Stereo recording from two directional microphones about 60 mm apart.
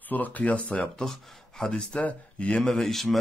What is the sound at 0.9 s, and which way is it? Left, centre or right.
Speech, centre.